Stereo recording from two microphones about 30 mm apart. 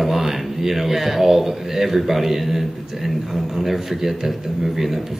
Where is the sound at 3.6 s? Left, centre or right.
Centre.